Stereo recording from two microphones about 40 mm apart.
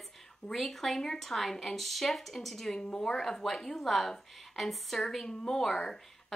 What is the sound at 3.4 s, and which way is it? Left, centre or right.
A woman's voice, centre.